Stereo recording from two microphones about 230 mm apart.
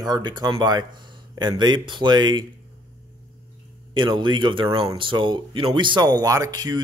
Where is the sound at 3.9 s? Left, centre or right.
Centre.